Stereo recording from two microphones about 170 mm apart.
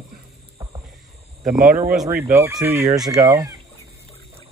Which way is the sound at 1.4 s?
55° right (ahead or behind).